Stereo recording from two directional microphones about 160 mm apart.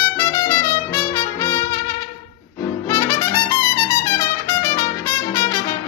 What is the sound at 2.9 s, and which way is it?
Trumpet, 20° left (ahead or behind).